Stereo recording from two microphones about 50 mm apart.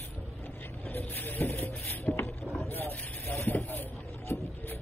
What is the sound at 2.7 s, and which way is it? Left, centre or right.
Vehicle, left.